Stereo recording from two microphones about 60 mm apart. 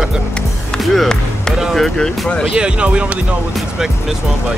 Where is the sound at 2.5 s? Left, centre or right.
Centre.